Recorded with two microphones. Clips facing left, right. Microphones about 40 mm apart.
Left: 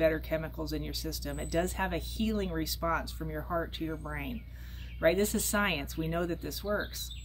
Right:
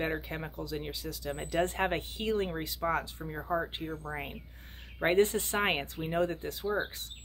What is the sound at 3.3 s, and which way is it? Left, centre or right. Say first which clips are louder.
Speech: right 1 dB; centre.